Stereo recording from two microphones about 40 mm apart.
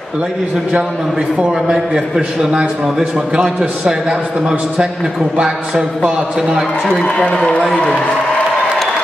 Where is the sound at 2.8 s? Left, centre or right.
Centre.